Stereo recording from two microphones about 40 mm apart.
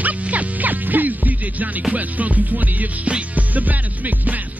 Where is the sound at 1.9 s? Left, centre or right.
Right.